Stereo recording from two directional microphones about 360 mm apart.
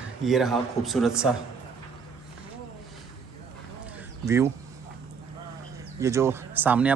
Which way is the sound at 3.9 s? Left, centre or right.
Centre.